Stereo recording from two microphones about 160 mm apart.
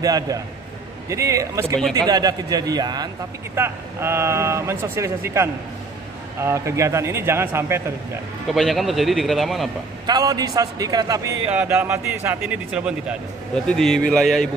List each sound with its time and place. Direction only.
0.0 s a man's voice: 20° right (ahead or behind)
8.5 s a man's voice: centre (ahead or behind)
10.0 s a man's voice: 25° right (ahead or behind)
11.5 s a man's voice: 10° right (ahead or behind)